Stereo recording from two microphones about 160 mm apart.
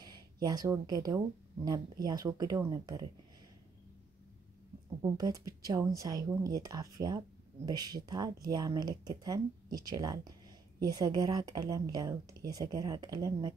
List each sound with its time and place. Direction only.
0.0 s speech: 25° right (ahead or behind)
5.0 s speech: 25° right (ahead or behind)